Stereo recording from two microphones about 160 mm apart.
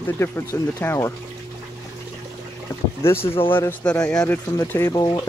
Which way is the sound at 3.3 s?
30° left (ahead or behind).